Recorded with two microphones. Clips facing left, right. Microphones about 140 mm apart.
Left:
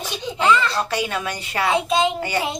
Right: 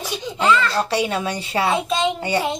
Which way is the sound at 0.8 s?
30° right (ahead or behind).